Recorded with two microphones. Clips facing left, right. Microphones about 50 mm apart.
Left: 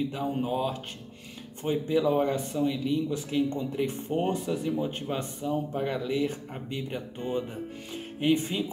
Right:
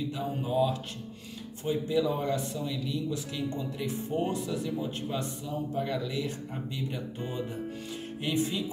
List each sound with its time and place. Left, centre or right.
0.1 s speech: left
8.2 s speech: left